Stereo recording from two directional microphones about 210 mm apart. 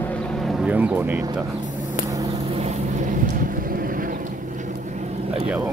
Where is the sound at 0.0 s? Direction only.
5° left (ahead or behind).